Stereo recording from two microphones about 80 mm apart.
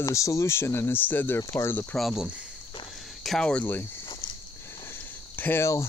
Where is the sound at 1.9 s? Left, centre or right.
Centre.